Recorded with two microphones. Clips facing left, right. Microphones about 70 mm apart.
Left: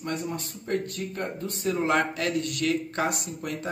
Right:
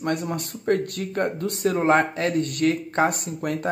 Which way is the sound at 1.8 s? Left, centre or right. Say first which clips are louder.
Right 6 dB; right.